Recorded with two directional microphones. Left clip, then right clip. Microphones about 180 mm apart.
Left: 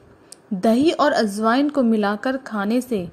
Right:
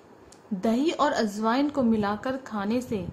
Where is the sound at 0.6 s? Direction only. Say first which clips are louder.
Left 7 dB; 30° left (ahead or behind).